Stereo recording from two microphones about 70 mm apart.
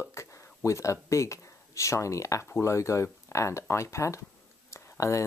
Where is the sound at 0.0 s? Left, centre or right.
Left.